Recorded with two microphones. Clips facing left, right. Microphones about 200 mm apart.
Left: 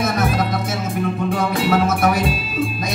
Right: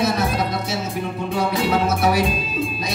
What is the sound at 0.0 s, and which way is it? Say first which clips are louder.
Music: left 1 dB; 50° left (ahead or behind).